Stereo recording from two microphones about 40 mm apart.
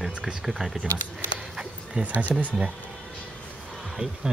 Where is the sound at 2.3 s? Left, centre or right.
Centre.